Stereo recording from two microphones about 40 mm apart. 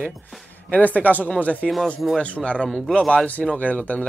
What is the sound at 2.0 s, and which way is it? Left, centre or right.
Speech, centre.